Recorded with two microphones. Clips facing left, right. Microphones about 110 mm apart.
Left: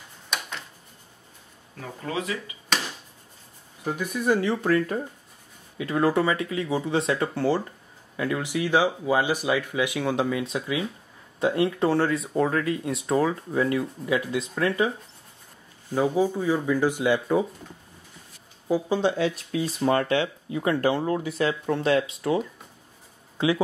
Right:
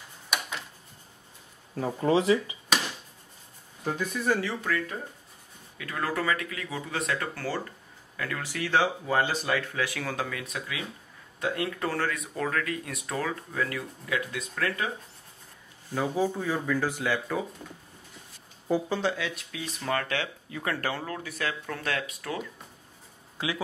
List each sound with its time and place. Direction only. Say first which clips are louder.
0.3 s a sound: even; 5° right (ahead or behind)
1.8 s speech: right 7 dB; 30° right (ahead or behind)
3.8 s speech: left 3 dB; 10° left (ahead or behind)
4.6 s speech: left 10 dB; 35° left (ahead or behind)
5.8 s speech: left 8 dB; 25° left (ahead or behind)
15.9 s speech: left 5 dB; 15° left (ahead or behind)
18.7 s speech: left 4 dB; 15° left (ahead or behind)
19.1 s speech: left 9 dB; 35° left (ahead or behind)